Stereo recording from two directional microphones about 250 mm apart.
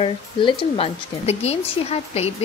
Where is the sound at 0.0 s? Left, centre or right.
Centre.